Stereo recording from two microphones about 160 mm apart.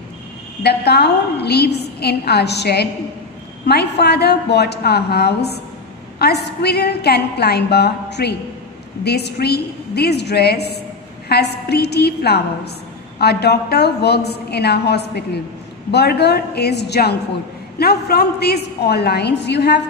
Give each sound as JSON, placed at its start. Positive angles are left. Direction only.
{"t": 0.6, "sound": "a woman's voice", "side_deg": 90}